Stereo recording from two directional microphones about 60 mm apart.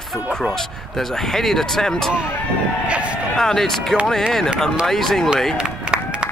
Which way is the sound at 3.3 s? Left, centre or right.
Centre.